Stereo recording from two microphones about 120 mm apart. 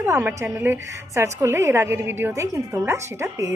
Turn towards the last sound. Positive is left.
turn(degrees=-25)  # may be behind; listen again after turning